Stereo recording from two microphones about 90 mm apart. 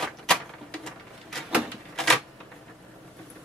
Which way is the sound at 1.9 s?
5° left (ahead or behind).